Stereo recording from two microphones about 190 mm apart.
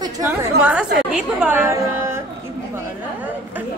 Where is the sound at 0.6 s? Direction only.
5° right (ahead or behind).